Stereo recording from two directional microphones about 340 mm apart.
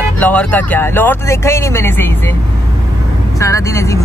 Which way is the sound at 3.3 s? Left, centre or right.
Centre.